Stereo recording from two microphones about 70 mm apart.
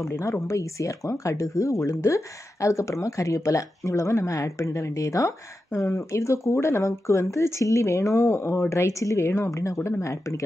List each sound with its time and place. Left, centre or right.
0.0 s speech: left